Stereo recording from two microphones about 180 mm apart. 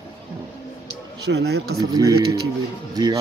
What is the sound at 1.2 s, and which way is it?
Speech, 65° right (ahead or behind).